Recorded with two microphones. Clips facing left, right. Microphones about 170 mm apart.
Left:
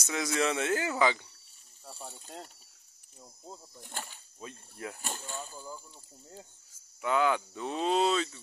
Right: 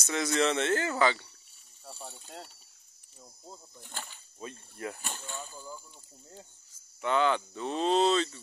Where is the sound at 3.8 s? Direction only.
45° left (ahead or behind).